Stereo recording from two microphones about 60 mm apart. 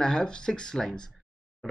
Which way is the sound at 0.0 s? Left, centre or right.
Centre.